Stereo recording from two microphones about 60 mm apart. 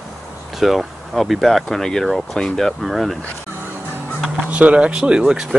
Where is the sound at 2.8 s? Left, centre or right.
Centre.